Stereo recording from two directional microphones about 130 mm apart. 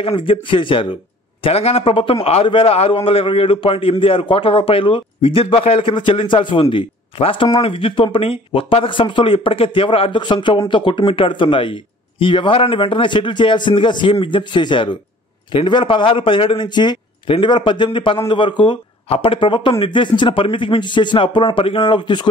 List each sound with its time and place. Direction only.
0.0 s a man's voice: 40° left (ahead or behind)